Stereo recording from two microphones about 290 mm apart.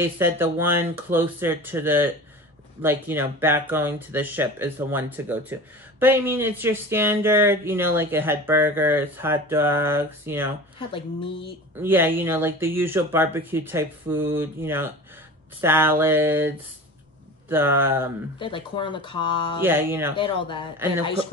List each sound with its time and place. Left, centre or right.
0.0 s speech: centre
10.9 s speech: centre
11.8 s speech: centre
18.4 s speech: centre
19.6 s speech: centre
20.2 s speech: centre